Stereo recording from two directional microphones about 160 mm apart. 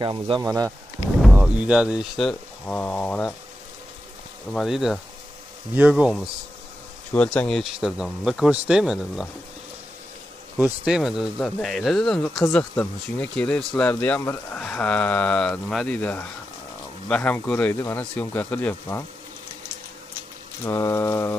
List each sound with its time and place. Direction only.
0.0 s speech: 30° right (ahead or behind)
0.4 s speech: 20° right (ahead or behind)
1.4 s speech: 5° right (ahead or behind)
4.5 s speech: centre (ahead or behind)
7.2 s speech: 5° left (ahead or behind)
10.6 s speech: 5° right (ahead or behind); by 19.0 s 15° left (ahead or behind)
20.6 s speech: 20° left (ahead or behind)